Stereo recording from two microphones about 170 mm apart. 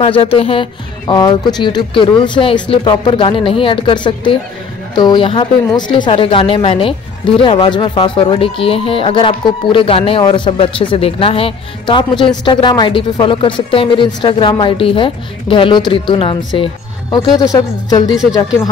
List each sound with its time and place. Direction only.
0.0 s speech: 30° left (ahead or behind)